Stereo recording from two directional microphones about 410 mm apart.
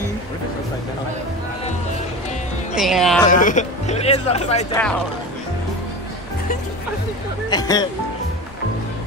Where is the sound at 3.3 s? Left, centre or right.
Centre.